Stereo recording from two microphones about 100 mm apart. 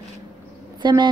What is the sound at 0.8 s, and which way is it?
Speech, 50° right (ahead or behind).